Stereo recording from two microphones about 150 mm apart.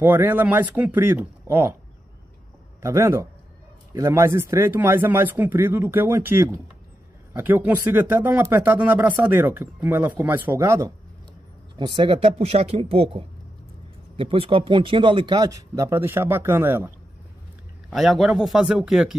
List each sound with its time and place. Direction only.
0.0 s speech: 15° right (ahead or behind)
2.8 s speech: 15° right (ahead or behind)
11.7 s speech: 30° right (ahead or behind); by 16.9 s 15° right (ahead or behind)
17.8 s speech: centre (ahead or behind)